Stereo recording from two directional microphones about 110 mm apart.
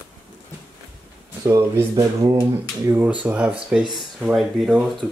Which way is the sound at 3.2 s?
10° right (ahead or behind).